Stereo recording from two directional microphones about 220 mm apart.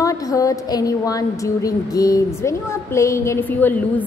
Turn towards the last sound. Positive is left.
turn(degrees=10)  # may be behind; listen again after turning